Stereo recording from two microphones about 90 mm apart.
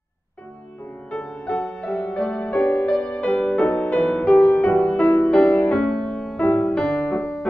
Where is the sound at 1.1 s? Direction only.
10° left (ahead or behind).